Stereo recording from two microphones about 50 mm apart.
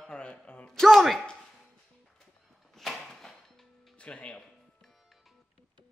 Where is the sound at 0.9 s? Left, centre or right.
Centre.